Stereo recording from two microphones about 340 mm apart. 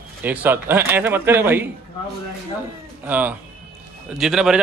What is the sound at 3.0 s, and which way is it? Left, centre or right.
A man's voice, centre.